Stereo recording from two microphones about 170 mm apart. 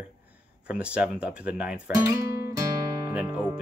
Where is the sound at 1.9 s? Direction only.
20° right (ahead or behind).